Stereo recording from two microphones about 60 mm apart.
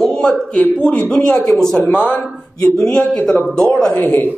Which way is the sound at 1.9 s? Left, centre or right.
Left.